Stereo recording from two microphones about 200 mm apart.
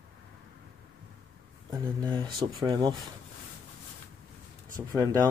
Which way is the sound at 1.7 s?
20° right (ahead or behind).